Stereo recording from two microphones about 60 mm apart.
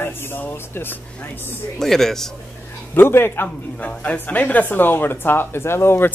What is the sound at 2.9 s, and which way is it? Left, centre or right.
Speech, left.